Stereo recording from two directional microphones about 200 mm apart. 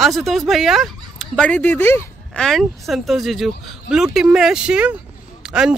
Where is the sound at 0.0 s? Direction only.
Centre (ahead or behind).